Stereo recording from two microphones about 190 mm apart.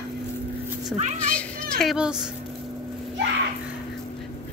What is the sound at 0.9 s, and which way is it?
Speech, 35° right (ahead or behind).